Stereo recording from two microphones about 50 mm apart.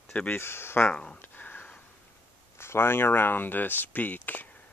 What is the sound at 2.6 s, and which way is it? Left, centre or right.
Speech, left.